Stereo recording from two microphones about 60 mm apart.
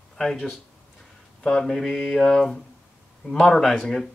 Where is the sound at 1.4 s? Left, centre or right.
Centre.